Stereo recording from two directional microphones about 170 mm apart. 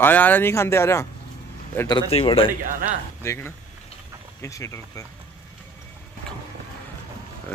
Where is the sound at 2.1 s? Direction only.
35° left (ahead or behind).